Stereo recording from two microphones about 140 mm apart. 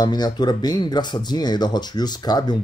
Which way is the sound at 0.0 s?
30° left (ahead or behind).